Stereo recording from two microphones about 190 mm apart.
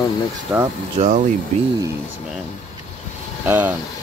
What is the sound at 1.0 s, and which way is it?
Speech, 40° right (ahead or behind).